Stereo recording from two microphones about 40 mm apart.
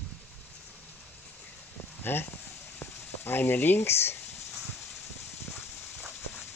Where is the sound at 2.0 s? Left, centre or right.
Left.